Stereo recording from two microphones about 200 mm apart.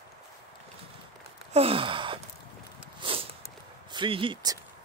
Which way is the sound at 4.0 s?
25° right (ahead or behind).